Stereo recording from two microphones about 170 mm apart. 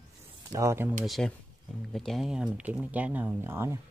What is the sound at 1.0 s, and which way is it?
Speech, centre (ahead or behind).